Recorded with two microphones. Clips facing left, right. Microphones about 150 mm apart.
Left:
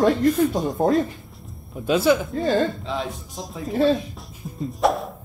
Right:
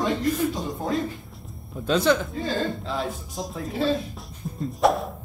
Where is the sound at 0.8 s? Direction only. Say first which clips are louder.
Left 9 dB; 45° left (ahead or behind).